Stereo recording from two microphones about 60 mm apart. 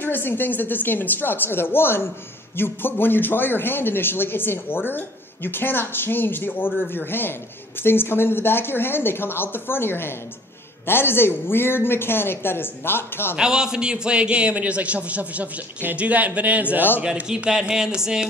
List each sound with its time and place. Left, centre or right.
0.0 s a man's voice: left
13.4 s a man's voice: centre
17.0 s a man's voice: centre